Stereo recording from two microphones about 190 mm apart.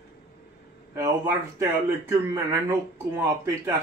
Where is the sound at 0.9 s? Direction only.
15° right (ahead or behind).